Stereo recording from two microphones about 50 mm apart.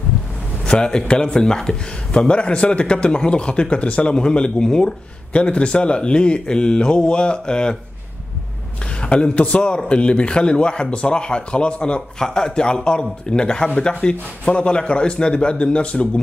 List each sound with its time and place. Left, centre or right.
0.7 s speech: centre
9.0 s speech: left